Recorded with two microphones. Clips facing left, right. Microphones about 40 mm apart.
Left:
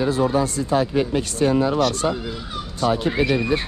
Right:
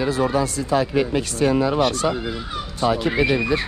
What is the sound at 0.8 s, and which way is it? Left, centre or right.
Speech, right.